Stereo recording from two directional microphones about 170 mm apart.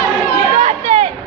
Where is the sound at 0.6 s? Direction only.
40° right (ahead or behind).